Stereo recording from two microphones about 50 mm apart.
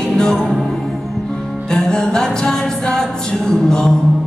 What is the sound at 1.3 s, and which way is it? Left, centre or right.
Music, centre.